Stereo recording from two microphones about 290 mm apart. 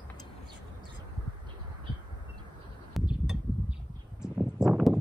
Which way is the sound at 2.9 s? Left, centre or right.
Centre.